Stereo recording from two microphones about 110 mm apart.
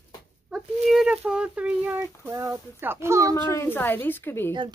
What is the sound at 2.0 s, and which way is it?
Speech, 25° right (ahead or behind).